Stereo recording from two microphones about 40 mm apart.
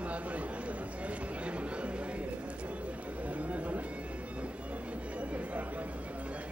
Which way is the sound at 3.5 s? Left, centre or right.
Right.